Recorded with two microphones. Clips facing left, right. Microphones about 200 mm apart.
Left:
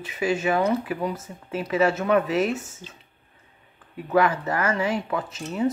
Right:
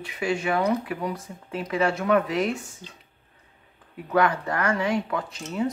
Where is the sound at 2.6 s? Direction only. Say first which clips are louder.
Left 2 dB; 20° left (ahead or behind).